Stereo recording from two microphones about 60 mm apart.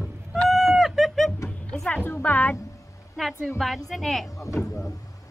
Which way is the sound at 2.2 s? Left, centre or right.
Left.